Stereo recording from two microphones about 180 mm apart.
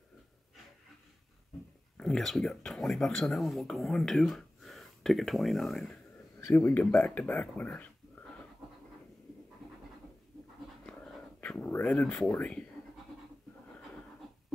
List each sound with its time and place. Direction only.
2.0 s speech: centre (ahead or behind)
6.4 s speech: 15° left (ahead or behind)
10.9 s a sound: 5° left (ahead or behind)